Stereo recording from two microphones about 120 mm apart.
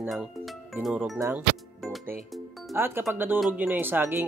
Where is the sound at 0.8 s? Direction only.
5° right (ahead or behind).